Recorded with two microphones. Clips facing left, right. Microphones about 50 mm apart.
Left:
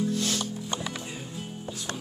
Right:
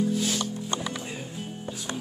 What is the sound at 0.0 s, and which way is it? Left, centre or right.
Music, centre.